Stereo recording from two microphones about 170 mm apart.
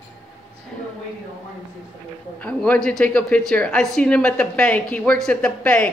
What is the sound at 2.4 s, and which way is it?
Speech, 5° left (ahead or behind).